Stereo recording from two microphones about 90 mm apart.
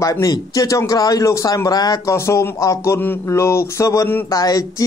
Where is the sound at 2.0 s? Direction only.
30° left (ahead or behind).